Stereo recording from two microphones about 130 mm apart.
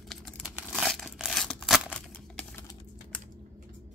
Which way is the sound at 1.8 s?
10° left (ahead or behind).